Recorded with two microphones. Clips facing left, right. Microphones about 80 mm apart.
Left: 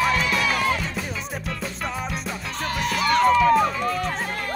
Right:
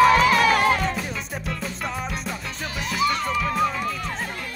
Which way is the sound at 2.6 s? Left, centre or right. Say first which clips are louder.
Left 1 dB; left.